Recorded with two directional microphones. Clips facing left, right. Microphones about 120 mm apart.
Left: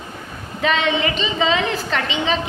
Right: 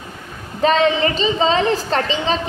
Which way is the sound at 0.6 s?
35° right (ahead or behind).